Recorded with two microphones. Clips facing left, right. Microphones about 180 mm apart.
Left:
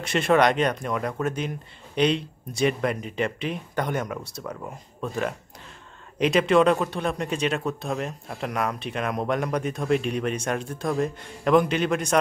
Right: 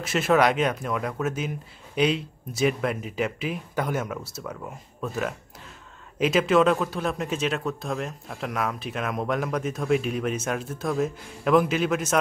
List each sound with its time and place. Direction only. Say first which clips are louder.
0.0 s speech: left 1 dB; 5° right (ahead or behind)